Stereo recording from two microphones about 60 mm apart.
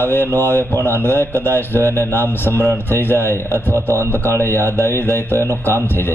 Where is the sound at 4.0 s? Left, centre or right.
Right.